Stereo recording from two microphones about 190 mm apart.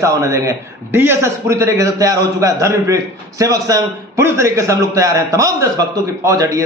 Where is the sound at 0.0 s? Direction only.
15° right (ahead or behind).